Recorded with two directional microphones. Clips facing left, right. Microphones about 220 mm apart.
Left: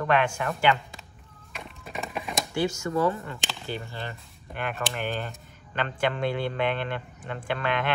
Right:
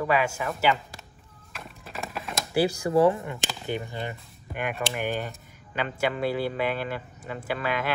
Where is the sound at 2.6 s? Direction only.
35° right (ahead or behind).